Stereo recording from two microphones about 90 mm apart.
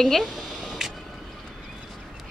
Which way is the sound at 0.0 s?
Centre (ahead or behind).